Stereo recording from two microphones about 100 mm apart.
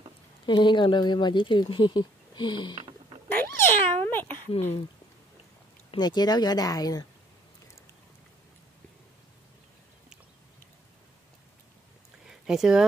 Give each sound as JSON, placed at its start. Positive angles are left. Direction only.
{"t": 0.5, "sound": "speech", "side_deg": 50}
{"t": 3.3, "sound": "cat", "side_deg": 20}
{"t": 4.5, "sound": "speech", "side_deg": 90}
{"t": 5.9, "sound": "speech", "side_deg": 45}
{"t": 12.3, "sound": "speech", "side_deg": -5}